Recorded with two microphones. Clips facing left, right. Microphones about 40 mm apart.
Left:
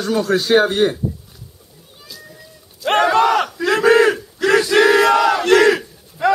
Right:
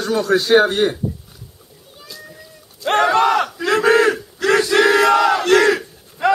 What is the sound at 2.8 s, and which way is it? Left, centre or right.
Battle cry, centre.